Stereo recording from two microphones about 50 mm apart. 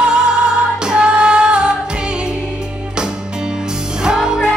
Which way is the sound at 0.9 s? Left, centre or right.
Centre.